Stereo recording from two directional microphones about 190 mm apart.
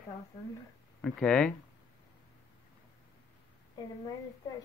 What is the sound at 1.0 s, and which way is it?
Speech, 5° left (ahead or behind).